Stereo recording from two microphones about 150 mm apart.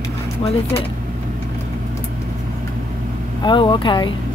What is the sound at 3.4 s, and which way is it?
Speech, 35° left (ahead or behind).